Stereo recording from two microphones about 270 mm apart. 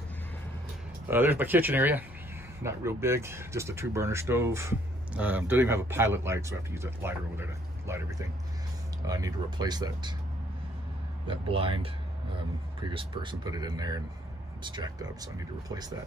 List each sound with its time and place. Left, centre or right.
1.0 s speech: centre
11.2 s speech: centre